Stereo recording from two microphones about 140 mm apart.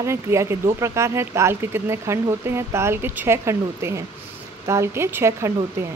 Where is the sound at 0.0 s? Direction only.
20° right (ahead or behind).